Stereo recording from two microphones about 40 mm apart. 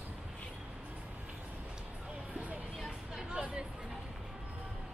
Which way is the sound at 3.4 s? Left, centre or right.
Right.